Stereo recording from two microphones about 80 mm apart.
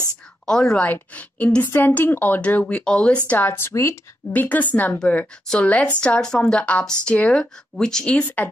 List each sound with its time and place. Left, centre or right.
0.5 s a woman's voice: centre
0.8 s a woman's voice: left
3.3 s speech: left
4.3 s a woman's voice: left